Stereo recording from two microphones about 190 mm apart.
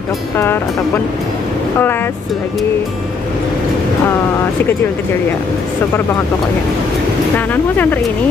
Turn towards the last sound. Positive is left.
turn(degrees=10)  # may be behind; listen again after turning